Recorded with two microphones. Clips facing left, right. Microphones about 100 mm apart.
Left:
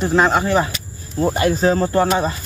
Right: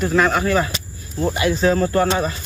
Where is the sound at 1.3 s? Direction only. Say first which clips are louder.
Even; 40° left (ahead or behind).